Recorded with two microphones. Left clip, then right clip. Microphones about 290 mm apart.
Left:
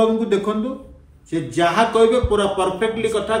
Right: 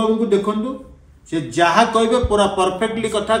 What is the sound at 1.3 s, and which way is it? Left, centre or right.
A man's voice, centre.